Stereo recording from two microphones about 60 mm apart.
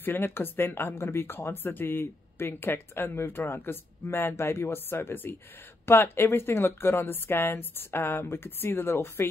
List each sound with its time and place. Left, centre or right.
0.0 s speech: left